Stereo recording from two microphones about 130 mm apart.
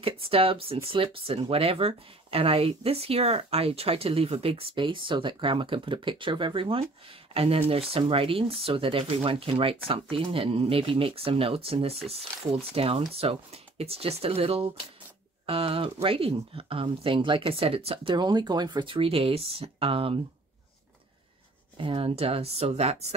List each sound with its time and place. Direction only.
0.0 s speech: 45° right (ahead or behind)
21.7 s speech: 45° right (ahead or behind)